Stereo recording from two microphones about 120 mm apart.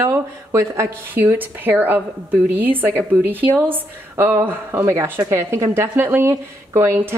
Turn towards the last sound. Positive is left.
turn(degrees=-25)  # may be behind; listen again after turning